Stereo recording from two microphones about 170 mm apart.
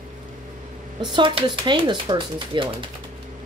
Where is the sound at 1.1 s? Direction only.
30° right (ahead or behind).